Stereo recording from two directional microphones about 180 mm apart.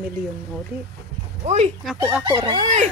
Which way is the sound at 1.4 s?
35° right (ahead or behind).